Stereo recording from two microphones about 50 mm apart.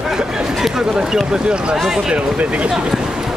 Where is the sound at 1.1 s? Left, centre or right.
Centre.